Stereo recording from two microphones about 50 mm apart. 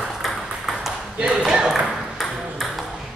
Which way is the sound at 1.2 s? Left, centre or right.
Right.